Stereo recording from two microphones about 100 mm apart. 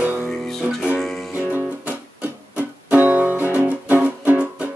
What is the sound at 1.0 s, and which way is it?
Music, centre (ahead or behind).